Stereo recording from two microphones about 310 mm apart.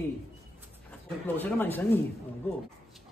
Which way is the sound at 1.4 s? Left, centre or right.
Centre.